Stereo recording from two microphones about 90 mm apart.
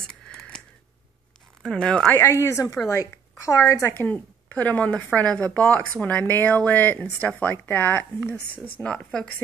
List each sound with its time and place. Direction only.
0.0 s a sound: 5° left (ahead or behind)
1.6 s speech: 10° left (ahead or behind)
2.1 s a woman's voice: 30° left (ahead or behind)
3.9 s speech: 20° left (ahead or behind)